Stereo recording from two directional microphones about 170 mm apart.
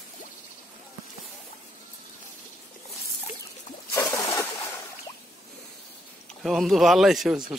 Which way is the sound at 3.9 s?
20° left (ahead or behind).